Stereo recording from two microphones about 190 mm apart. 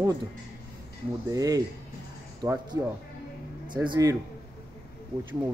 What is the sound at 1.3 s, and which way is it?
A man's voice, 20° right (ahead or behind).